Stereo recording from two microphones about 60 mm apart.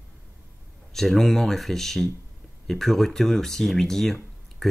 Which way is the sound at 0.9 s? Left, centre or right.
Centre.